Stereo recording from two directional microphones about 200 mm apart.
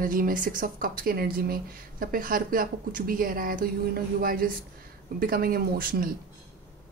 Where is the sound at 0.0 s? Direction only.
45° right (ahead or behind).